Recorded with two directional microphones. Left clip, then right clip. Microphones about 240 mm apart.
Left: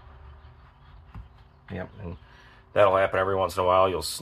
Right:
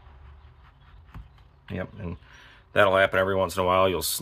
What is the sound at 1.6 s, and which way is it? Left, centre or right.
Speech, right.